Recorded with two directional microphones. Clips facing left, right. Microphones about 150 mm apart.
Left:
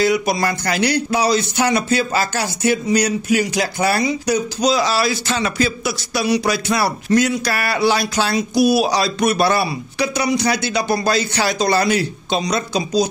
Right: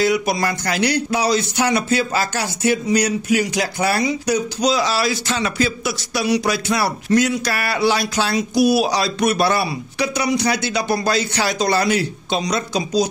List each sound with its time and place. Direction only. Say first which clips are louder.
0.0 s speech: left 1 dB; 35° left (ahead or behind)